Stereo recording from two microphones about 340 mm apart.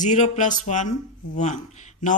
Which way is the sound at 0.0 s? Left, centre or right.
Left.